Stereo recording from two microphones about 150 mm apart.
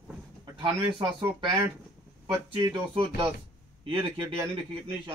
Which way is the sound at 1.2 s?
35° right (ahead or behind).